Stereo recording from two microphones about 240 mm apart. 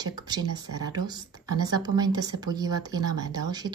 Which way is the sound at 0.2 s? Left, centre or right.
Centre.